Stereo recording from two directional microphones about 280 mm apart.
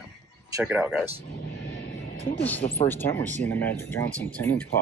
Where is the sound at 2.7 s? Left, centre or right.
Centre.